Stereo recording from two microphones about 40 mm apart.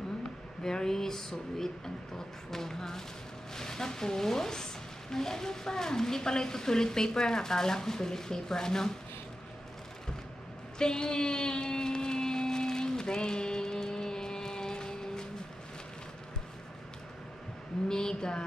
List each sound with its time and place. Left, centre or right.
0.7 s speech: centre
10.8 s a sound: centre
17.8 s a woman's voice: centre